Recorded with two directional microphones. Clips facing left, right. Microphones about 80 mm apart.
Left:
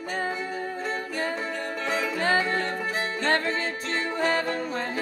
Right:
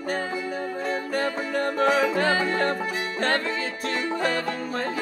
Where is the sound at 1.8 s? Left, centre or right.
Right.